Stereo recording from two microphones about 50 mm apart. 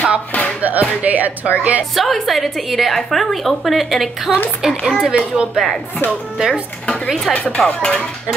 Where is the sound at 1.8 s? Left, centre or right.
Centre.